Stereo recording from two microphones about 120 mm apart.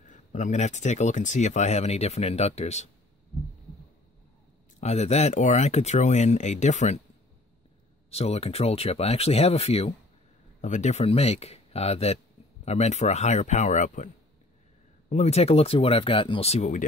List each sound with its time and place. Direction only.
0.0 s speech: 90° left; by 2.9 s 65° left (ahead or behind)
4.7 s speech: 65° left (ahead or behind)
8.1 s speech: 60° left (ahead or behind)
10.6 s speech: 80° left
15.0 s speech: 70° left (ahead or behind)